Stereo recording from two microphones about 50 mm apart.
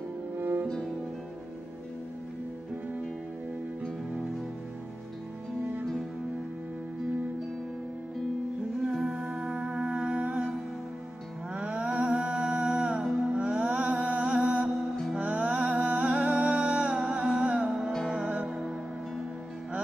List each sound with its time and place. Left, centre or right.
0.4 s music: right
9.0 s music: centre
11.5 s a sound: right
13.4 s music: right
18.3 s music: right